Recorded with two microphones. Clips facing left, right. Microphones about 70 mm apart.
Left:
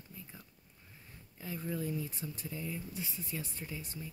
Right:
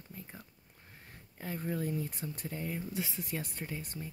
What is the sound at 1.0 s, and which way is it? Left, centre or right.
Speech, right.